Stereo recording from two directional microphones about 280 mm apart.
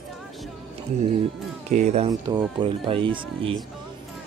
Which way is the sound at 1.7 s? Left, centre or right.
Right.